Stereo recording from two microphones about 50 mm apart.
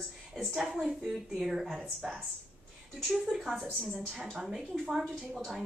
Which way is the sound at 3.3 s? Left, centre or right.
Centre.